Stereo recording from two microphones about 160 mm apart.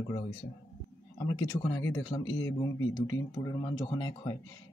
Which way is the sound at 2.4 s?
20° left (ahead or behind).